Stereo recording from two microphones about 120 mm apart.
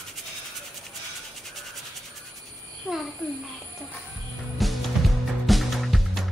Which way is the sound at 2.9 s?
5° left (ahead or behind).